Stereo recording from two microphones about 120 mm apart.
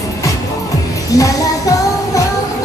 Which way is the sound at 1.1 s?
30° left (ahead or behind).